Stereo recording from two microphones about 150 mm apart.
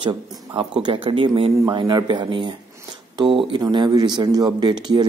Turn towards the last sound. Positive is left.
turn(degrees=-30)  # may be behind; listen again after turning